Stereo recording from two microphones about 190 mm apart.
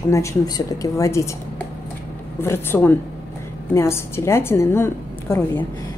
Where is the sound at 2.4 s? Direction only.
10° left (ahead or behind).